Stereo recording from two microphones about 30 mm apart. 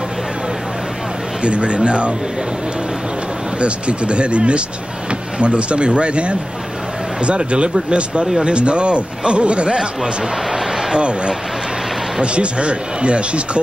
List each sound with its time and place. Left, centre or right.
1.4 s speech: right
3.5 s speech: right
10.5 s a sound: centre
12.2 s speech: right